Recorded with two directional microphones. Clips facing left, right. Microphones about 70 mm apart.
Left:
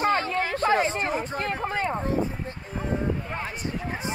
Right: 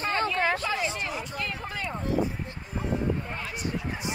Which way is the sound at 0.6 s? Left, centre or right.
Left.